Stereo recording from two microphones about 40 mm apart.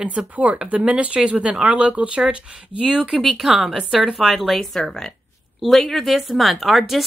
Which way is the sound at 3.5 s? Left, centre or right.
Centre.